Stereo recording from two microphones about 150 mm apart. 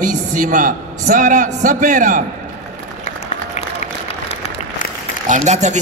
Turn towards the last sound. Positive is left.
turn(degrees=-50)  # may be behind; listen again after turning